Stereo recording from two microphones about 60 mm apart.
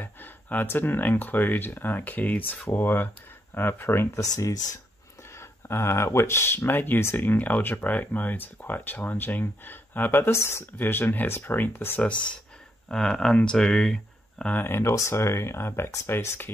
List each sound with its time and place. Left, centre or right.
0.0 s speech: left
4.1 s speech: left
5.7 s speech: left
10.3 s speech: left
12.0 s speech: left
12.8 s speech: centre
14.5 s speech: left
15.0 s speech: left